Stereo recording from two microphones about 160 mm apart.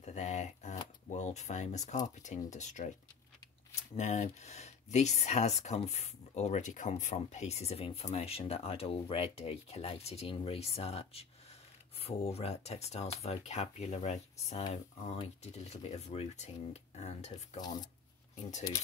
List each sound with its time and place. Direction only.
0.0 s typewriter: 45° left (ahead or behind)
1.1 s speech: 45° left (ahead or behind)
17.6 s speech: 25° left (ahead or behind)